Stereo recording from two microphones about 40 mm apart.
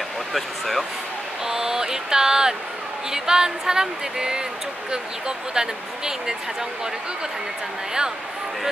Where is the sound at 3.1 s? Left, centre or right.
Centre.